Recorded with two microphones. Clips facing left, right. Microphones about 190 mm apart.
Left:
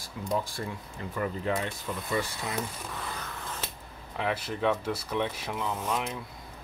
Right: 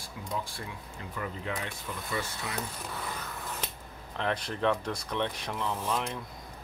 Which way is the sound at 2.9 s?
10° right (ahead or behind).